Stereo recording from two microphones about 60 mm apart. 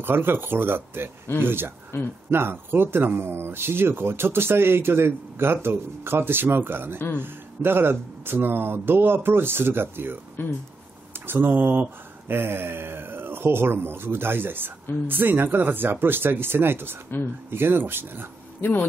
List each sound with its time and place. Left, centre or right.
0.0 s speech: right
1.9 s speech: left
2.3 s speech: right
10.4 s a man's voice: left
11.1 s speech: right
18.6 s a man's voice: left